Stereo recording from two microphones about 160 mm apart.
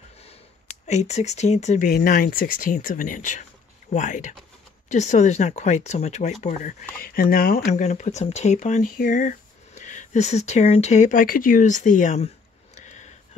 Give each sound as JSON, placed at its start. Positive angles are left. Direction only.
{"t": 0.8, "sound": "speech", "side_deg": 45}
{"t": 1.9, "sound": "speech", "side_deg": 65}
{"t": 6.4, "sound": "speech", "side_deg": 55}
{"t": 7.0, "sound": "speech", "side_deg": 65}
{"t": 7.6, "sound": "speech", "side_deg": 45}
{"t": 12.7, "sound": "a sound", "side_deg": 50}